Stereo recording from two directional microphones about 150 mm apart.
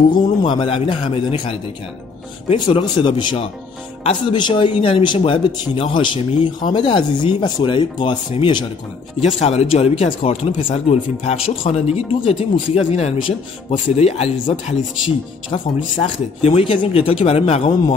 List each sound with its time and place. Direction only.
0.1 s speech: 30° left (ahead or behind)
2.5 s speech: 35° left (ahead or behind)
9.2 s speech: 45° left (ahead or behind)